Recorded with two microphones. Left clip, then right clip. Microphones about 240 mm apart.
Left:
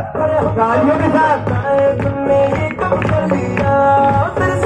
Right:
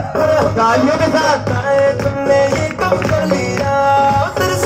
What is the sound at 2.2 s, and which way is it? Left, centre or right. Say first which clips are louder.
Music: right 1 dB; right.